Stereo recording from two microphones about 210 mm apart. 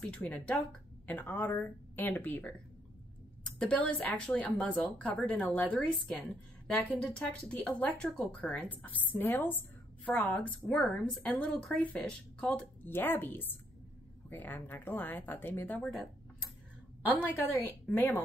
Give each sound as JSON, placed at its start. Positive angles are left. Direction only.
{"t": 0.0, "sound": "speech", "side_deg": 5}
{"t": 3.5, "sound": "speech", "side_deg": 5}
{"t": 17.6, "sound": "speech", "side_deg": 10}